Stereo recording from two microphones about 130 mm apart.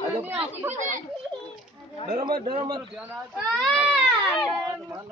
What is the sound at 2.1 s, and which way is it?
Speech, 35° right (ahead or behind).